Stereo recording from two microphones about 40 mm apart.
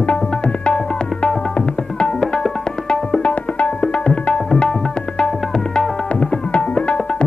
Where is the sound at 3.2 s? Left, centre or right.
Left.